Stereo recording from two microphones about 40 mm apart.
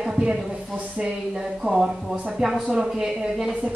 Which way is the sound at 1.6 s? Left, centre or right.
Centre.